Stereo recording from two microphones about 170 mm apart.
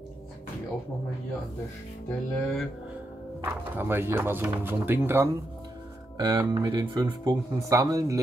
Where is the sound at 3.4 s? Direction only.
15° right (ahead or behind).